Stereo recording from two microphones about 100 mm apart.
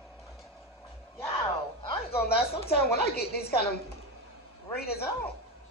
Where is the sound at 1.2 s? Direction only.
25° left (ahead or behind).